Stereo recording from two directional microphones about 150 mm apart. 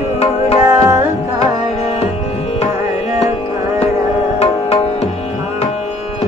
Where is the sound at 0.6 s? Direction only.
20° right (ahead or behind).